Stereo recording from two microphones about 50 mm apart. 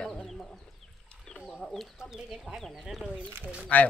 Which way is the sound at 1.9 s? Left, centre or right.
Centre.